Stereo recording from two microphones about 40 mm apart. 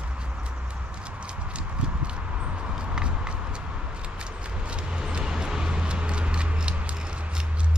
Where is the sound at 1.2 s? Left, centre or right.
Right.